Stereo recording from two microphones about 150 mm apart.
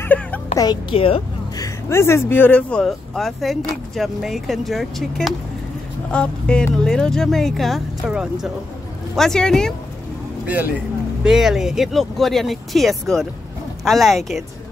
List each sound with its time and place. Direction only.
0.0 s a sound: 10° left (ahead or behind)
0.6 s a woman's voice: 25° left (ahead or behind)
0.9 s speech: 40° left (ahead or behind)
1.6 s speech: 20° left (ahead or behind)
10.4 s speech: 10° right (ahead or behind)